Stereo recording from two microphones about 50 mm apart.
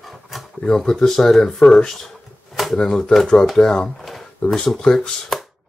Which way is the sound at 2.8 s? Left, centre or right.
Centre.